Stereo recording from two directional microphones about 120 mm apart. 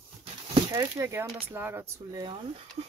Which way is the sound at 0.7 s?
25° right (ahead or behind).